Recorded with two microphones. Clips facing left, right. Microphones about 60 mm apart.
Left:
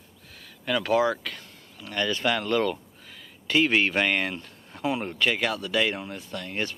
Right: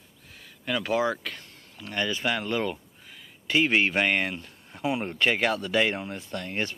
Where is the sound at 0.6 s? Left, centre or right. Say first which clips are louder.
Left 3 dB; centre.